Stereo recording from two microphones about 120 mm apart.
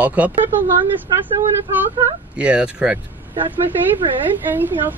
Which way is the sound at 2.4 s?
10° right (ahead or behind).